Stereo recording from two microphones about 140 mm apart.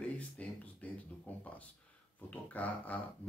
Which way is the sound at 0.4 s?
10° left (ahead or behind).